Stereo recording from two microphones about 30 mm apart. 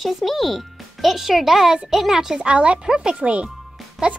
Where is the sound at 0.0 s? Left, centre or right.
Centre.